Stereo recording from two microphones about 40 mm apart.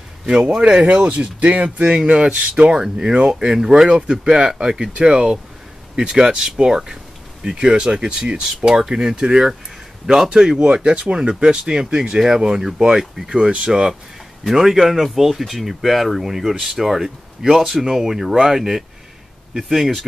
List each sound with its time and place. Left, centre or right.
0.6 s speech: right
14.5 s speech: centre